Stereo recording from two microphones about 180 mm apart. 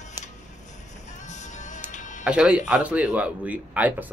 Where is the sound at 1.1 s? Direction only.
40° left (ahead or behind).